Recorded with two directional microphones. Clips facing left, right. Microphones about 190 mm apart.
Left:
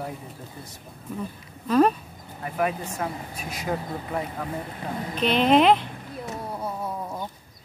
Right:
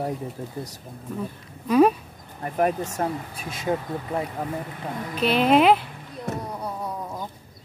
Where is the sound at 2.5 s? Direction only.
40° right (ahead or behind); by 4.2 s 25° right (ahead or behind).